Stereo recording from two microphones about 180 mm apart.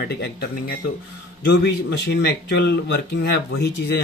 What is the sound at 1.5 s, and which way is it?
Speech, 75° left (ahead or behind).